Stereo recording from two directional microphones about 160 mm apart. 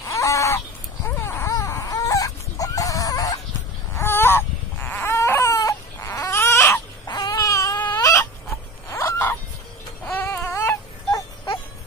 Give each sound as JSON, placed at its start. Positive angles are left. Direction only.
{"t": 0.1, "sound": "chicken", "side_deg": 20}
{"t": 1.0, "sound": "a sound", "side_deg": 15}
{"t": 10.0, "sound": "music", "side_deg": 15}